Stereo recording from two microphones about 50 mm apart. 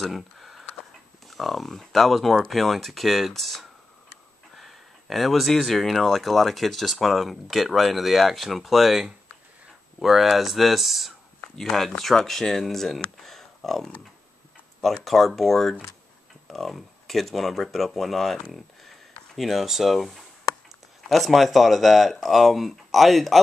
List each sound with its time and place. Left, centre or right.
0.0 s speech: centre
13.2 s a sound: centre
14.8 s speech: centre